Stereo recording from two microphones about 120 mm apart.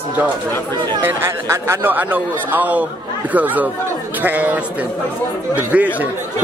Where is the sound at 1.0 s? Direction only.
20° right (ahead or behind).